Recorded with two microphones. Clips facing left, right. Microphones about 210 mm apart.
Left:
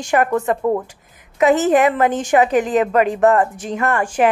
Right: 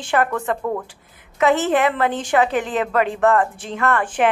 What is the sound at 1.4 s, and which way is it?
A woman's voice, 40° left (ahead or behind).